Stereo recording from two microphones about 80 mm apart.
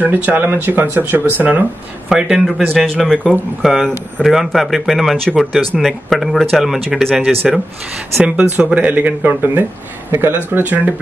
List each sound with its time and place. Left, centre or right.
0.0 s speech: right
2.0 s speech: centre